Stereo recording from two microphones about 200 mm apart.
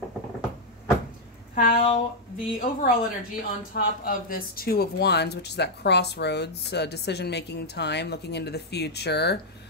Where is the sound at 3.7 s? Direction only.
45° left (ahead or behind).